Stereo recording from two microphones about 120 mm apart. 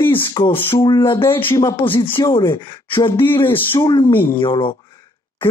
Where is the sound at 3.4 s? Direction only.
20° left (ahead or behind).